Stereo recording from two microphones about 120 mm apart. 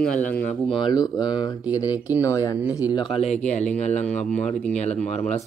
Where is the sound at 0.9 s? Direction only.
35° left (ahead or behind).